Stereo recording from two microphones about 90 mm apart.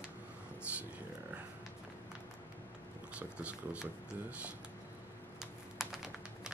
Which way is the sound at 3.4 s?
15° right (ahead or behind).